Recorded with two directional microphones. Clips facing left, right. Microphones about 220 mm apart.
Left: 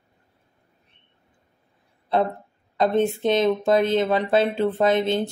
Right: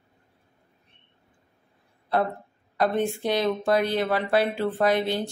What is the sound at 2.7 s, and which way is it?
Speech, 20° left (ahead or behind).